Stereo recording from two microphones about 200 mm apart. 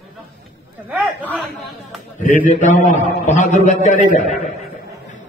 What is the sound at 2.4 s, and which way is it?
A man's voice, 35° left (ahead or behind).